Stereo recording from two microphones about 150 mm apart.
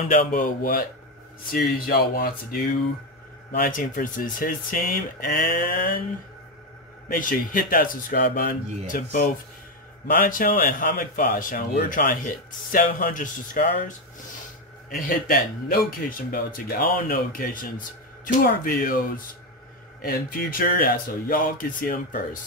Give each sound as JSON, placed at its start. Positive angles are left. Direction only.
{"t": 0.1, "sound": "speech", "side_deg": 60}
{"t": 3.6, "sound": "speech", "side_deg": 65}
{"t": 7.1, "sound": "speech", "side_deg": 65}
{"t": 14.9, "sound": "speech", "side_deg": 80}